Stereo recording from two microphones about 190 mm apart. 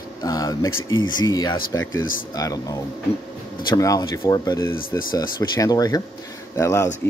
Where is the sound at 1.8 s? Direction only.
90° left.